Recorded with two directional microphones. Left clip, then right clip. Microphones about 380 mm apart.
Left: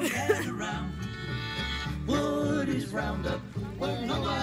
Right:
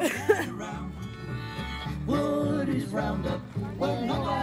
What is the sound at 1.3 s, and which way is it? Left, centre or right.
Music, right.